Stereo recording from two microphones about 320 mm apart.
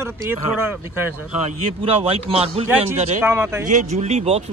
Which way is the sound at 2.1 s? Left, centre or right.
Centre.